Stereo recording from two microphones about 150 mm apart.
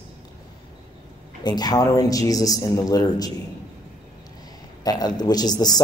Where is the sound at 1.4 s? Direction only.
30° left (ahead or behind).